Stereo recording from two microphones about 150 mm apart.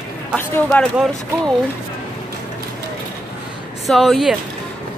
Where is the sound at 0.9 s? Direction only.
Centre (ahead or behind).